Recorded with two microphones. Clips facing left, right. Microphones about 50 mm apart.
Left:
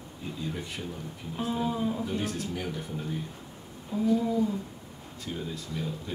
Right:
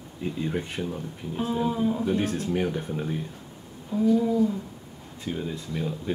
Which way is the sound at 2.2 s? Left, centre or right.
Right.